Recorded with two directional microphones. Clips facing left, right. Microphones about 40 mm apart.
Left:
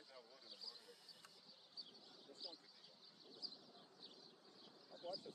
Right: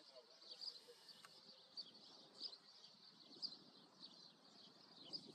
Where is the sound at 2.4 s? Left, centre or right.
Centre.